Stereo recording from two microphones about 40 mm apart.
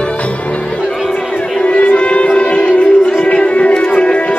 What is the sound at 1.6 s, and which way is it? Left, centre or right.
Music, left.